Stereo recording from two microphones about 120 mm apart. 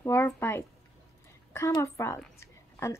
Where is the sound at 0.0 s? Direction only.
20° left (ahead or behind).